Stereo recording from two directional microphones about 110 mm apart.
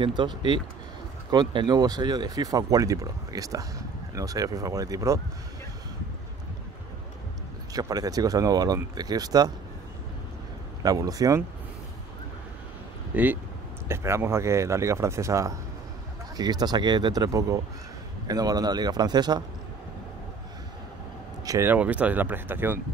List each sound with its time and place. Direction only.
0.0 s speech: 50° right (ahead or behind); by 5.2 s 30° right (ahead or behind)
7.7 s speech: 35° right (ahead or behind)
10.8 s speech: 35° right (ahead or behind)
13.1 s speech: 15° right (ahead or behind); by 19.4 s 40° right (ahead or behind)
21.6 s speech: 15° right (ahead or behind)